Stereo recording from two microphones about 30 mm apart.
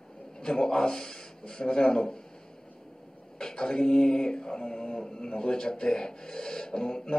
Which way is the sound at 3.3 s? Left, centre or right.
Left.